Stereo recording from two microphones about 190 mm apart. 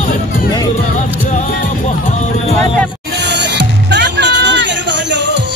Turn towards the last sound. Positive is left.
turn(degrees=-65)  # may be behind; listen again after turning